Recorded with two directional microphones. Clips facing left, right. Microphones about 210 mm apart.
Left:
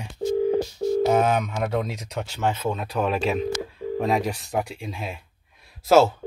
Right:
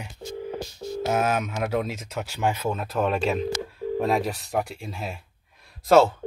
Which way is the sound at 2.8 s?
Centre (ahead or behind).